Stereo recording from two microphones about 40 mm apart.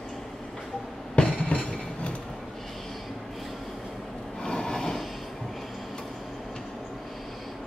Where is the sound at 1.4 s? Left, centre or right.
Left.